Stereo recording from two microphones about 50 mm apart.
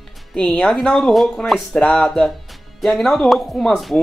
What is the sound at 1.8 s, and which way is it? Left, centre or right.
Music, left.